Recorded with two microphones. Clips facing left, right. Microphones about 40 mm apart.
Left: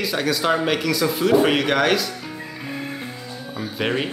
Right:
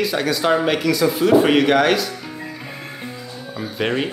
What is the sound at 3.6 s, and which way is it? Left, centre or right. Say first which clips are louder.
Speech: right 2 dB; centre.